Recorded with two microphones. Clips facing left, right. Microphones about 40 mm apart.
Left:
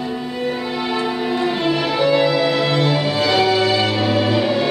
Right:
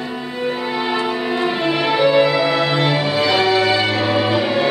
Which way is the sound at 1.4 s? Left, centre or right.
Centre.